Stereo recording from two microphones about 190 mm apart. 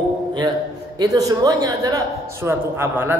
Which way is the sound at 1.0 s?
20° right (ahead or behind).